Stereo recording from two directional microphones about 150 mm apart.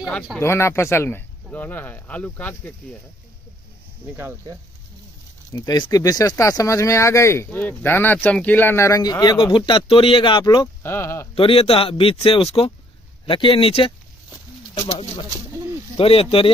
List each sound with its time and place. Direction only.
0.4 s speech: 15° left (ahead or behind)
4.2 s speech: 15° right (ahead or behind)
5.5 s speech: 25° left (ahead or behind)
10.8 s speech: 15° left (ahead or behind)
11.3 s speech: 40° left (ahead or behind)